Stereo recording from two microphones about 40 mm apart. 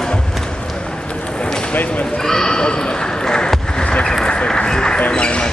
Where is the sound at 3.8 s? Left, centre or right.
Left.